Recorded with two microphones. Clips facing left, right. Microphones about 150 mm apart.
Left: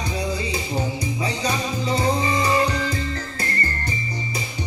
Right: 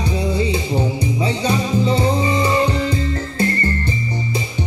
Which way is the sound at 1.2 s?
25° right (ahead or behind).